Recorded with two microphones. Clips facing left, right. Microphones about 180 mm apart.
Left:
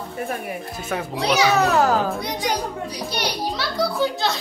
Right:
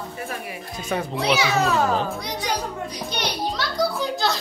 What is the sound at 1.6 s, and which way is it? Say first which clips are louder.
Speech: left 3 dB; 70° left (ahead or behind).